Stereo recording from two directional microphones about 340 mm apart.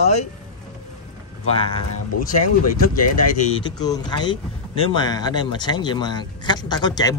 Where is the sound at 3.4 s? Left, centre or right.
Centre.